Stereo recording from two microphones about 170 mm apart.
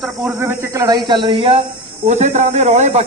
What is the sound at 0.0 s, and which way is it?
Speech, 10° right (ahead or behind).